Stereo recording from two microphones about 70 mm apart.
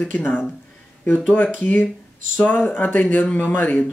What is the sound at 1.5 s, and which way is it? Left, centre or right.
Speech, left.